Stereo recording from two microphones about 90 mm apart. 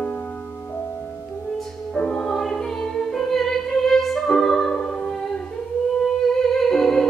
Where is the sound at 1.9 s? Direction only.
15° left (ahead or behind).